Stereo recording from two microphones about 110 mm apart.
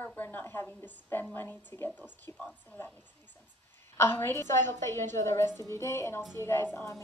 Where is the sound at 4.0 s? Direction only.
20° left (ahead or behind).